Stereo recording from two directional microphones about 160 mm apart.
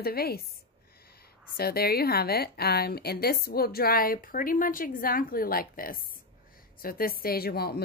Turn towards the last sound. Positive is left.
turn(degrees=75)  # may be behind; listen again after turning